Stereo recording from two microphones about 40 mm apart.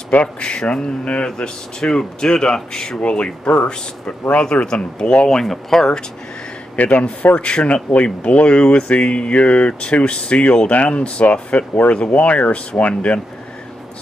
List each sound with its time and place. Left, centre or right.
0.2 s speech: left
3.0 s speech: left
5.3 s speech: centre
6.8 s speech: left
7.3 s speech: left